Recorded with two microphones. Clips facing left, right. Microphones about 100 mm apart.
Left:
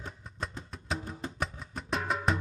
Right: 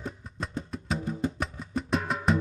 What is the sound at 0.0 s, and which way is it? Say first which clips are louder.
Music: right 3 dB; centre (ahead or behind).